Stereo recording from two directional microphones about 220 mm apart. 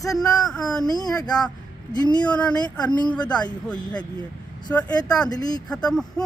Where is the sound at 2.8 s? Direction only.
20° left (ahead or behind).